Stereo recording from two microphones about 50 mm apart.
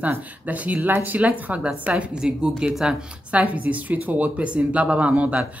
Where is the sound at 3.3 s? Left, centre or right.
Right.